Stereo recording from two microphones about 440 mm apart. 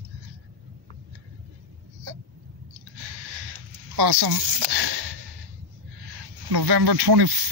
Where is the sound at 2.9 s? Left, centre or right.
Right.